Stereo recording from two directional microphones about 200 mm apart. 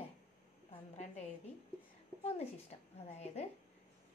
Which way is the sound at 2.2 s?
30° left (ahead or behind).